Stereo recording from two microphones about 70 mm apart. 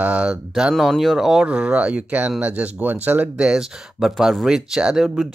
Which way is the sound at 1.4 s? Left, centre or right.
Centre.